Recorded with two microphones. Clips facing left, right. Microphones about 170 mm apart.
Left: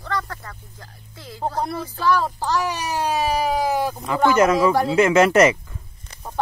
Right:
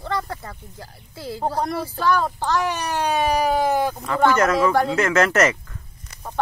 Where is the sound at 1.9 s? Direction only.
Centre (ahead or behind).